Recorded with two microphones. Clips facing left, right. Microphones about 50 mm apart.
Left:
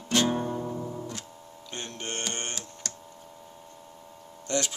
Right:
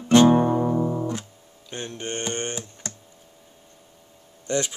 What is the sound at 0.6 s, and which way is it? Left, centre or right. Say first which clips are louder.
Music: right 11 dB; right.